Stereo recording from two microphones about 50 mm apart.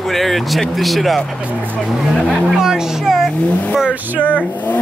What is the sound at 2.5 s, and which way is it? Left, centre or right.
Speech, centre.